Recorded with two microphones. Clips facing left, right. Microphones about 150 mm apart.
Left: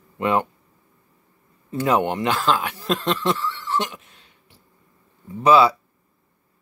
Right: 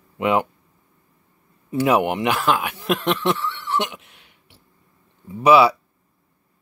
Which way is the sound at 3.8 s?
15° right (ahead or behind).